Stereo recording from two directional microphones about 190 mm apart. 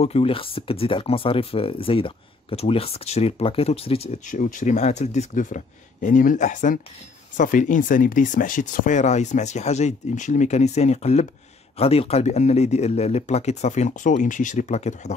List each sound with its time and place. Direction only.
0.0 s speech: 30° left (ahead or behind)
4.4 s speech: 45° left (ahead or behind)